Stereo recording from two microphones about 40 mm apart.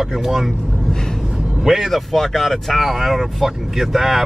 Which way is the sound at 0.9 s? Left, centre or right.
Centre.